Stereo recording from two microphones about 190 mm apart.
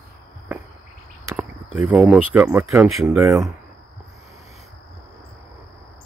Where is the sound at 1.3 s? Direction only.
10° right (ahead or behind).